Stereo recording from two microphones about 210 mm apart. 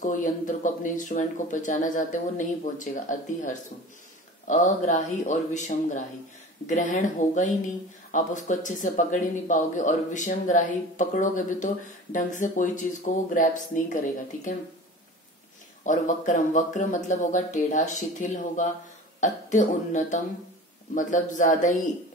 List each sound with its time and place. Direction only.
0.0 s speech: 40° left (ahead or behind)
15.8 s speech: 35° left (ahead or behind)